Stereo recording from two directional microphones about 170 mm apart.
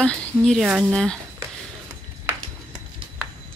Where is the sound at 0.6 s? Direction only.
5° right (ahead or behind).